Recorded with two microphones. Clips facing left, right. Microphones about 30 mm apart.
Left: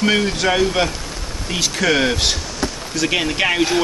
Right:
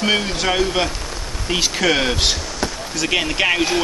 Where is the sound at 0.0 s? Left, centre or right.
Centre.